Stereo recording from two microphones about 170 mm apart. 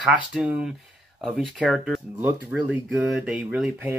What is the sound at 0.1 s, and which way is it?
Speech, 5° right (ahead or behind).